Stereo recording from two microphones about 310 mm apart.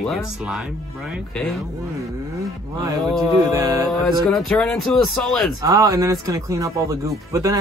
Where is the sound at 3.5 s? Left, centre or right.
Centre.